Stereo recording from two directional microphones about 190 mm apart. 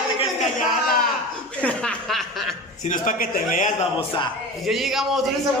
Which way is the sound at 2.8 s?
45° left (ahead or behind).